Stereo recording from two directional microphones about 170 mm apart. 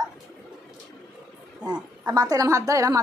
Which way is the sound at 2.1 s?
20° right (ahead or behind).